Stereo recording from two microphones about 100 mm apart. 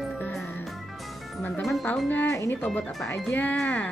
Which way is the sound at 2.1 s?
20° left (ahead or behind).